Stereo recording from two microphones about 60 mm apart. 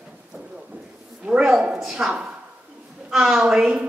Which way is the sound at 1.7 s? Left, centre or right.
Centre.